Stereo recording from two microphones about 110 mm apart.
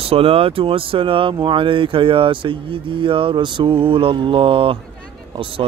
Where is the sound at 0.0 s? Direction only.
60° right (ahead or behind).